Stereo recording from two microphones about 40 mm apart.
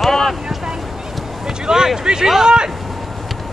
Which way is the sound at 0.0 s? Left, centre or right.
Centre.